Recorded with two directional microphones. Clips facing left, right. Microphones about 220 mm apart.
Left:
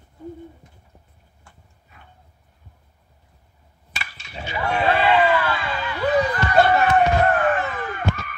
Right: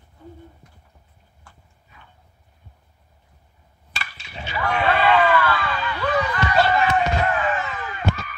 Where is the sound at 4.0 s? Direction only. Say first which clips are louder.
Left 1 dB; 20° left (ahead or behind).